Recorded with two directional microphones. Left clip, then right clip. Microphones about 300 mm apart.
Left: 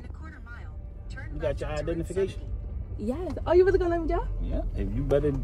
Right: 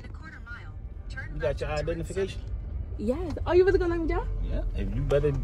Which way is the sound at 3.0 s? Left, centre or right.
Centre.